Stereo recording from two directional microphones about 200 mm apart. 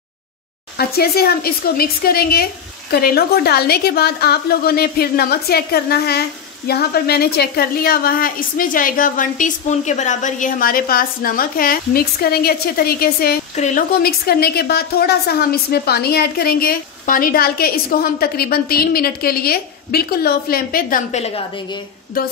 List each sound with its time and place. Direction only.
0.7 s a woman's voice: 50° left (ahead or behind)